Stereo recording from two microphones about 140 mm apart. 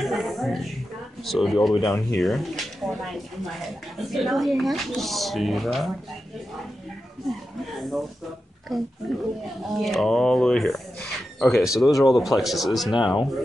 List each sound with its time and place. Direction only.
0.0 s speech: centre (ahead or behind)
7.2 s speech: centre (ahead or behind)
12.9 s speech: 35° left (ahead or behind)